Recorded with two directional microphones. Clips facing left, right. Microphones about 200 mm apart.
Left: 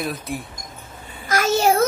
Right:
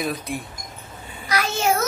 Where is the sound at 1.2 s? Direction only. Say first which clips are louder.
Left 4 dB; 45° left (ahead or behind).